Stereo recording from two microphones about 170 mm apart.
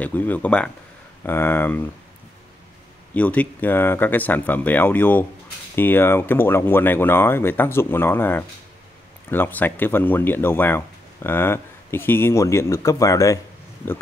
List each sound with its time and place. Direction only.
0.0 s speech: 10° left (ahead or behind)
3.2 s speech: 10° left (ahead or behind)